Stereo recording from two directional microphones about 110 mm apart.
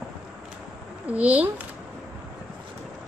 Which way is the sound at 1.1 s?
10° right (ahead or behind).